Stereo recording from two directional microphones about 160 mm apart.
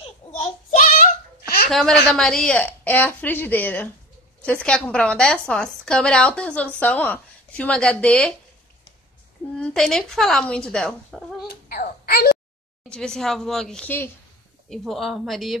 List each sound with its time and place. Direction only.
0.0 s child singing: 40° left (ahead or behind)
1.7 s a woman's voice: centre (ahead or behind)
9.6 s speech: 5° left (ahead or behind)
11.4 s wail: 70° left (ahead or behind)
12.8 s speech: 5° left (ahead or behind)
14.7 s speech: centre (ahead or behind)